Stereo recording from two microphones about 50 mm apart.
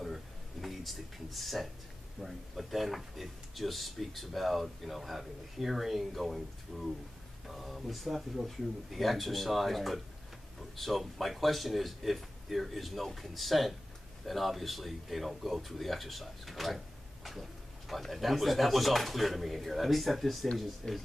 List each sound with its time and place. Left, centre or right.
0.0 s a sound: centre
2.2 s speech: centre
20.8 s speech: centre